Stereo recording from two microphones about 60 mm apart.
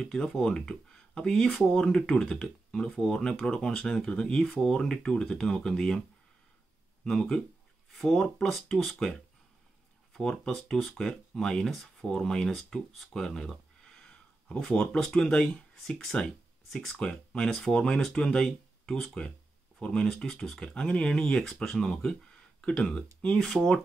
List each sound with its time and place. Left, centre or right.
0.0 s speech: centre
7.1 s speech: centre
10.1 s speech: centre